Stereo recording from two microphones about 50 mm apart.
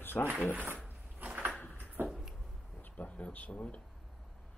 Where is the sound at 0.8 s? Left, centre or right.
Right.